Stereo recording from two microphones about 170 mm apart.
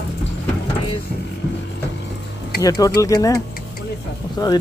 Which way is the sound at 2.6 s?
20° left (ahead or behind).